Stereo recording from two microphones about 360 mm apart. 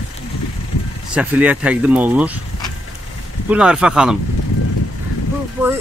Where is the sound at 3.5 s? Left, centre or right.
Centre.